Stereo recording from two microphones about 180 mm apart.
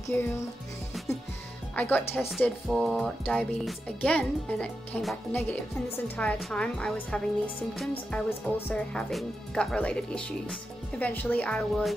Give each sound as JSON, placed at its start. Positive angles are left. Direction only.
{"t": 0.1, "sound": "speech", "side_deg": 10}
{"t": 1.8, "sound": "speech", "side_deg": 10}